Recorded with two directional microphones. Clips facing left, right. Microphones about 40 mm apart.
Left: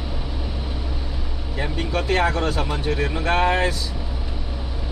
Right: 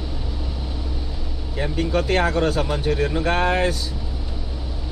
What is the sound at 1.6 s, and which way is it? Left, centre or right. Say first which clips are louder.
A man's voice: right 3 dB; centre.